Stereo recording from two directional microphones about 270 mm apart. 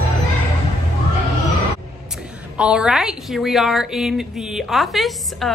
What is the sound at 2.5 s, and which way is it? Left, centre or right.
A woman's voice, centre.